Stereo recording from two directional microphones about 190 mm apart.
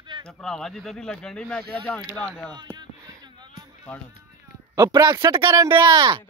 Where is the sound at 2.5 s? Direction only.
20° right (ahead or behind).